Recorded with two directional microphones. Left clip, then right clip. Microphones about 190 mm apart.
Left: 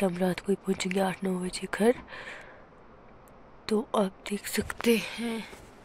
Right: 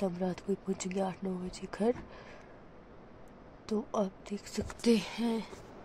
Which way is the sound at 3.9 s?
5° left (ahead or behind).